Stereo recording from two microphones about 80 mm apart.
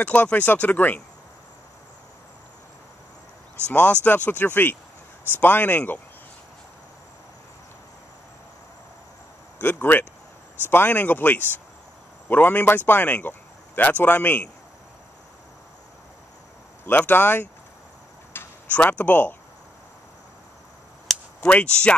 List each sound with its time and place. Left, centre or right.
0.0 s speech: centre
3.6 s speech: centre
9.6 s speech: left
16.8 s speech: left
18.3 s a sound: left
18.8 s speech: left
21.5 s speech: centre